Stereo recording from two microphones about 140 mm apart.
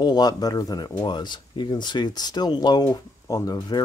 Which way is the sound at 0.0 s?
30° left (ahead or behind).